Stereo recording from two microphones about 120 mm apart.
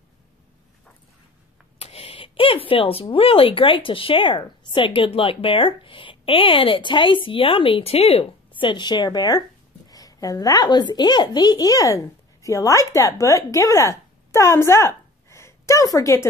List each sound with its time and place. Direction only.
1.8 s a child's voice: 55° left (ahead or behind); by 16.3 s 25° left (ahead or behind)